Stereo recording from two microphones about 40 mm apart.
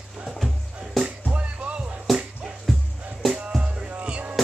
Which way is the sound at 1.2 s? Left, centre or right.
Right.